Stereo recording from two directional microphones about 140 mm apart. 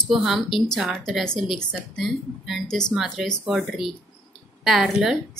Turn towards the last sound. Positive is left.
turn(degrees=0)  # may be behind; listen again after turning